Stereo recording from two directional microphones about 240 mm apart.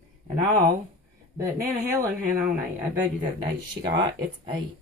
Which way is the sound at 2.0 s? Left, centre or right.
Centre.